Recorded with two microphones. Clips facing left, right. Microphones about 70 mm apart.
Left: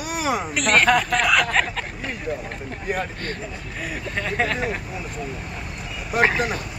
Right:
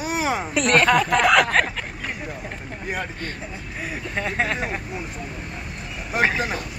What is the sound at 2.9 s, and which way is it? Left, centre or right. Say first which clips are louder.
Speech: left 2 dB; centre.